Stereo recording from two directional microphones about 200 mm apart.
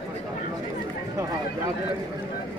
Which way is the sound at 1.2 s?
15° right (ahead or behind).